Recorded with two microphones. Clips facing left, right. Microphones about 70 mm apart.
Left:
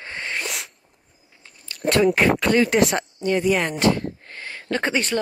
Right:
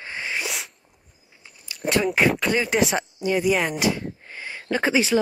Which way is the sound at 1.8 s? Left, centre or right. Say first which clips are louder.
Left 3 dB; centre.